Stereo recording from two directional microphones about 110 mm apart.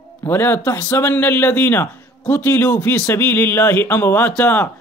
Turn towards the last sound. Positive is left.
turn(degrees=20)  # may be behind; listen again after turning